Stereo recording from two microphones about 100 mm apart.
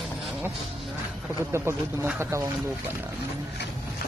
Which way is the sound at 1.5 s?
25° right (ahead or behind).